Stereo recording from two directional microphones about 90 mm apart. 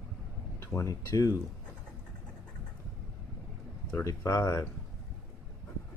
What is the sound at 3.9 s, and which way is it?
Speech, 35° left (ahead or behind).